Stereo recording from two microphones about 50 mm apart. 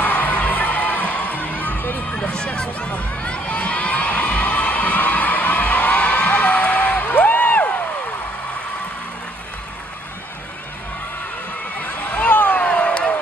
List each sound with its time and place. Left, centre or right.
0.0 s music: left
2.1 s crowd: left
11.8 s a sound: left